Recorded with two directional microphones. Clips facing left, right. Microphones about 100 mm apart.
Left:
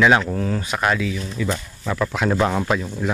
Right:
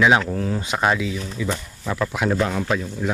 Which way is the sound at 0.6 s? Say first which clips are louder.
Right 2 dB; 20° right (ahead or behind).